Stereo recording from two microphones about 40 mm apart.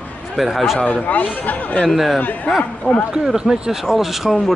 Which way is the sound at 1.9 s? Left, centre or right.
Centre.